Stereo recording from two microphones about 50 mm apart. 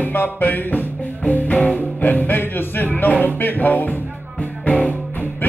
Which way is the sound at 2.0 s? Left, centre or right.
Left.